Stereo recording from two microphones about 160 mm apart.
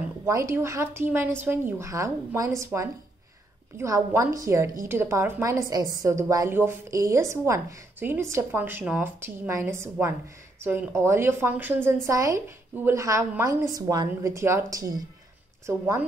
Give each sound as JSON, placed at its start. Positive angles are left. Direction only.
{"t": 0.2, "sound": "a woman's voice", "side_deg": -20}